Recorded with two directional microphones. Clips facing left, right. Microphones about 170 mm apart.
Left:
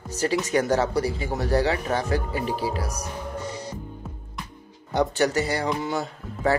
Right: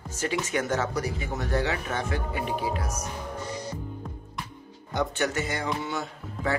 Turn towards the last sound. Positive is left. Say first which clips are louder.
# left 6 dB
turn(degrees=35)  # may be behind; listen again after turning